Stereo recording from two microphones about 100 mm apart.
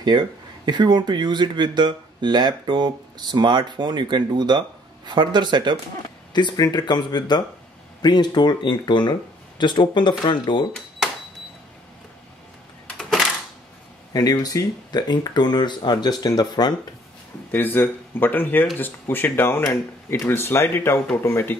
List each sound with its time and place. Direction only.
0.0 s speech: 50° right (ahead or behind)
6.3 s speech: 45° left (ahead or behind)
12.9 s a sound: centre (ahead or behind)
14.1 s speech: 40° left (ahead or behind)
17.5 s speech: 20° left (ahead or behind)